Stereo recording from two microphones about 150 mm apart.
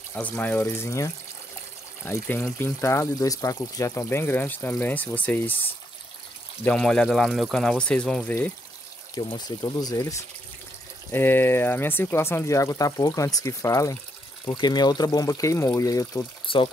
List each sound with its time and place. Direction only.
0.1 s speech: 10° left (ahead or behind)
9.1 s speech: 25° left (ahead or behind)
16.4 s speech: 35° left (ahead or behind)